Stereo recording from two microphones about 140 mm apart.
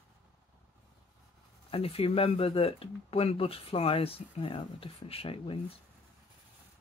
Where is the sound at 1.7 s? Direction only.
45° left (ahead or behind).